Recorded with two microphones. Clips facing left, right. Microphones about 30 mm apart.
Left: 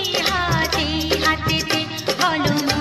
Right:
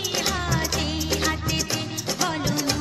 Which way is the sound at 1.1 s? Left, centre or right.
Left.